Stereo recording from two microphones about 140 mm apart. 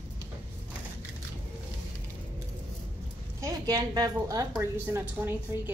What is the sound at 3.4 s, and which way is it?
A woman's voice, 25° right (ahead or behind).